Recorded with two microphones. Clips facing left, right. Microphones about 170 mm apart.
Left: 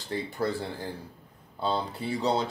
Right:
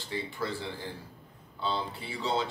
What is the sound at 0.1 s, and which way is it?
Speech, 45° left (ahead or behind).